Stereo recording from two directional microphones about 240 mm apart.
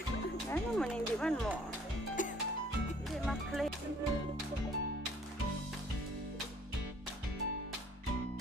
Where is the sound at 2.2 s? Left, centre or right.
Left.